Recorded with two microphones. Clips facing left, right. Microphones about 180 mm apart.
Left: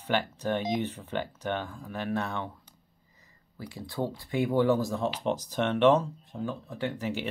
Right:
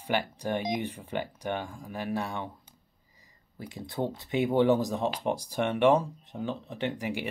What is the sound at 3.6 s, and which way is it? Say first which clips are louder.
Speech: even; 20° right (ahead or behind).